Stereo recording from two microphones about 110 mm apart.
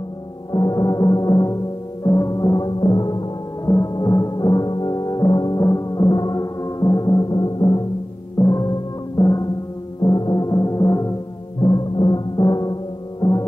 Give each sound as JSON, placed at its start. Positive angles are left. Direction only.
{"t": 0.5, "sound": "gong", "side_deg": 30}
{"t": 2.0, "sound": "music", "side_deg": 25}